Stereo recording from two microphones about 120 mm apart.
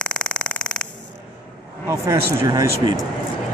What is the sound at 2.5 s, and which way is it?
Speech, 35° right (ahead or behind).